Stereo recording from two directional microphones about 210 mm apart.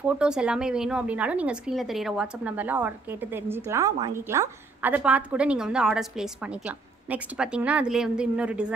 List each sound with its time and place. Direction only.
0.0 s speech: 5° right (ahead or behind)